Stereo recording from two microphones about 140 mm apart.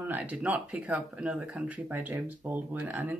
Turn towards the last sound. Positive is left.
turn(degrees=-15)  # may be behind; listen again after turning